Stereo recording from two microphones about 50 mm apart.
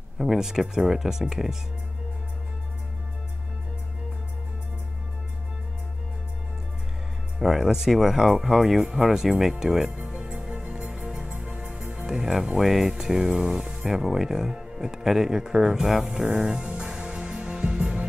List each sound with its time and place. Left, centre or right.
0.2 s speech: centre
7.3 s speech: centre
10.1 s music: centre
11.8 s speech: centre
16.3 s music: centre